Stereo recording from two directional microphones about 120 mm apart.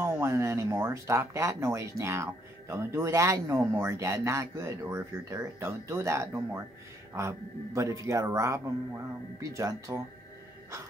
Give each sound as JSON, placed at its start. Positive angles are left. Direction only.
{"t": 0.0, "sound": "speech", "side_deg": -20}